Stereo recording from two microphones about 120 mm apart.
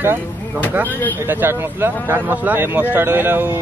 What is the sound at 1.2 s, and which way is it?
Speech, 20° right (ahead or behind).